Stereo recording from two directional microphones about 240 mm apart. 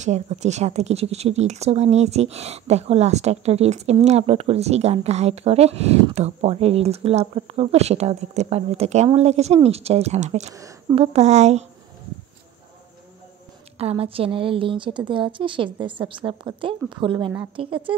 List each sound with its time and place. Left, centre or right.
0.0 s a woman's voice: right
10.5 s a woman's voice: centre
11.1 s a woman's voice: right
13.7 s a woman's voice: right